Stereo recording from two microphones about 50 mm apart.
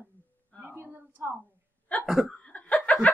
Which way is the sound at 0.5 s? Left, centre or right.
Left.